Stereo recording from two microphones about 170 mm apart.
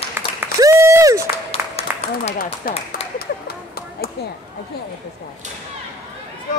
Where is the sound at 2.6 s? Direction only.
60° left (ahead or behind).